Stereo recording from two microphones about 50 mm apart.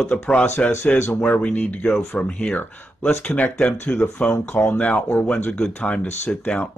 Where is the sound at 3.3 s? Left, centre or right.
Left.